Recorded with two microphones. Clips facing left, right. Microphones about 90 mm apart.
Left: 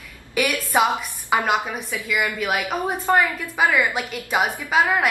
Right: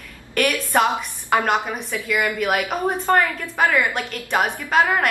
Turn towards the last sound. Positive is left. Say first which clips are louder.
# right 1 dB
turn(degrees=5)  # may be behind; listen again after turning